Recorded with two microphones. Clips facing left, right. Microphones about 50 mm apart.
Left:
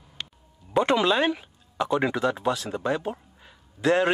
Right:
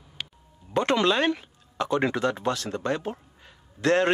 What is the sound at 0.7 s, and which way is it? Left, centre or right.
Speech, centre.